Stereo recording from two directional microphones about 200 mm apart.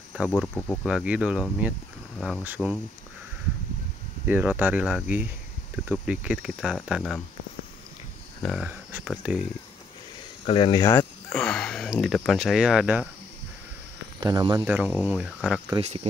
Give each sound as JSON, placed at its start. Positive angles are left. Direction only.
{"t": 0.4, "sound": "speech", "side_deg": 5}
{"t": 2.4, "sound": "speech", "side_deg": -5}
{"t": 4.3, "sound": "speech", "side_deg": -10}
{"t": 8.4, "sound": "speech", "side_deg": 0}
{"t": 10.4, "sound": "speech", "side_deg": 25}
{"t": 14.2, "sound": "speech", "side_deg": -20}
{"t": 15.0, "sound": "speech", "side_deg": -5}
{"t": 15.8, "sound": "speech", "side_deg": -30}